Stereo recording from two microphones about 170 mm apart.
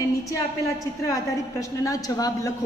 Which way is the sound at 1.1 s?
20° left (ahead or behind).